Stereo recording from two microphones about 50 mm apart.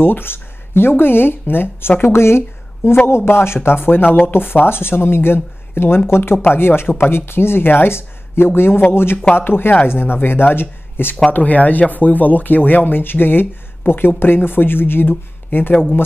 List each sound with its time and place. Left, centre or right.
0.0 s speech: left
2.1 s speech: left
11.3 s speech: left